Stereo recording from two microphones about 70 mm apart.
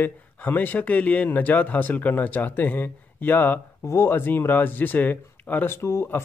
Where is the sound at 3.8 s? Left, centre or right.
Left.